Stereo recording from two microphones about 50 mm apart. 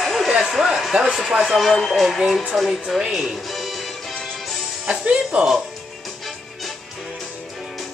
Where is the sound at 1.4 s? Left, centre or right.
Centre.